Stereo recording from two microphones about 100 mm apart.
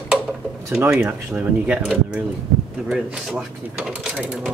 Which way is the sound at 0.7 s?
5° right (ahead or behind).